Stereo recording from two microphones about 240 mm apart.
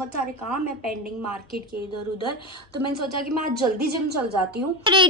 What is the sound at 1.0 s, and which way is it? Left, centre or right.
Speech, right.